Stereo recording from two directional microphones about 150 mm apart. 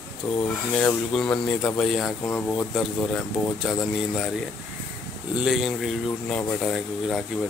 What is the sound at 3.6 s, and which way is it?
Speech, centre (ahead or behind).